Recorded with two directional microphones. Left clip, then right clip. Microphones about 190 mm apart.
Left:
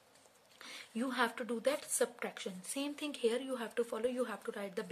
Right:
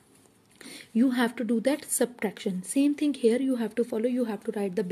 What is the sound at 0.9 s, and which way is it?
A woman's voice, 20° right (ahead or behind).